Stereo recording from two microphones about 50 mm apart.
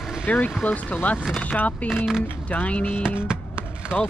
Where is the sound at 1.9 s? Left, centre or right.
Centre.